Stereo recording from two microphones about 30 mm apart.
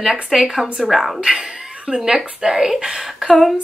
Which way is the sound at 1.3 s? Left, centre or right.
Centre.